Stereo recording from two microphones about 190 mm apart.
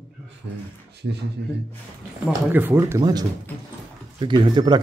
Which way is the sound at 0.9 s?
60° right (ahead or behind).